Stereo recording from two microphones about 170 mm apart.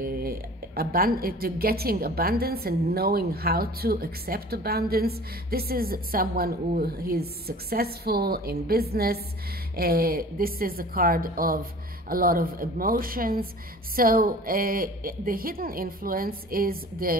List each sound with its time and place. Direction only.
0.0 s a woman's voice: 60° right (ahead or behind)